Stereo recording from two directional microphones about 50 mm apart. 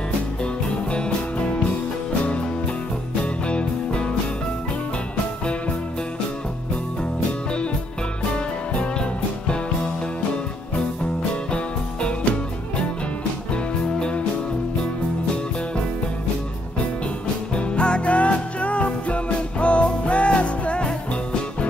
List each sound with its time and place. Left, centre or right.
3.2 s music: left
8.2 s music: left
13.5 s music: left
17.6 s music: left